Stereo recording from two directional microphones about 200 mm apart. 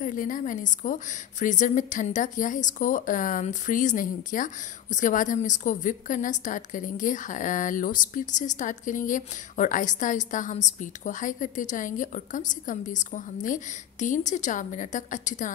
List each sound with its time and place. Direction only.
0.0 s a woman's voice: 40° left (ahead or behind)